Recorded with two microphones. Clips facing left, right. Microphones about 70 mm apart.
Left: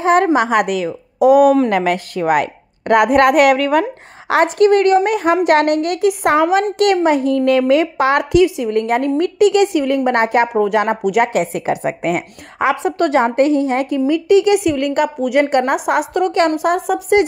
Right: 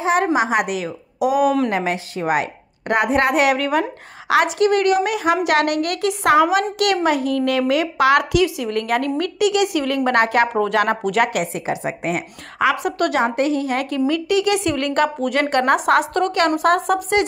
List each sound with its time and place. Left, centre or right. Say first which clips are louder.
0.0 s a woman's voice: left 5 dB; left
1.7 s a woman's voice: left 5 dB; left
4.3 s a woman's voice: left 4 dB; left
9.4 s a woman's voice: left 6 dB; left
9.8 s a woman's voice: left 3 dB; left
11.5 s a woman's voice: left 5 dB; left
12.5 s a woman's voice: left 3 dB; left
13.8 s a woman's voice: left 4 dB; centre
14.2 s a woman's voice: left 6 dB; left
14.7 s a woman's voice: left 3 dB; centre